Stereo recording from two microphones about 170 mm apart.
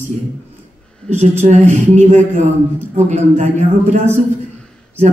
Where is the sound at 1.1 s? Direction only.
40° right (ahead or behind).